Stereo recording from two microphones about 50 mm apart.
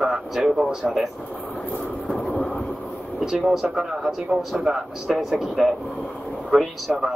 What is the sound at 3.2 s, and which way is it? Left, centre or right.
Speech, centre.